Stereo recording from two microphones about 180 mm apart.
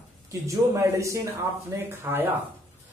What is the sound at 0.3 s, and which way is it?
Speech, 15° right (ahead or behind).